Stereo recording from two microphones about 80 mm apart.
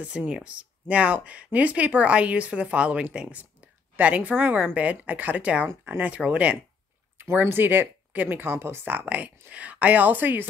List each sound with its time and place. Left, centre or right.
0.0 s speech: centre